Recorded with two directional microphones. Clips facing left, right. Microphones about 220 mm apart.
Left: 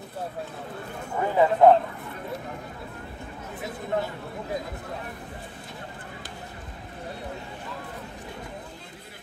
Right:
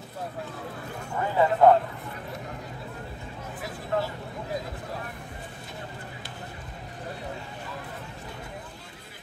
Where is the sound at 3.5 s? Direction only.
20° left (ahead or behind).